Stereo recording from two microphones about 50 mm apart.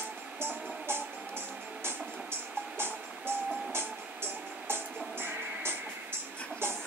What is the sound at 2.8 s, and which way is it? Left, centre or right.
Music, right.